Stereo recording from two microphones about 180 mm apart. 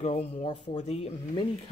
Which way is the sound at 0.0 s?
35° left (ahead or behind).